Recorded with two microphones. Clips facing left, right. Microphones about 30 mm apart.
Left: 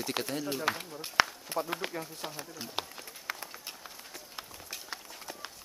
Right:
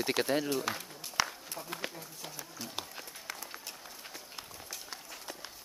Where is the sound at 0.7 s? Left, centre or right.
Centre.